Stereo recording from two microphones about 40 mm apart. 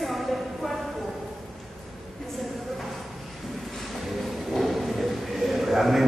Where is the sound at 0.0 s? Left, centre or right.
Centre.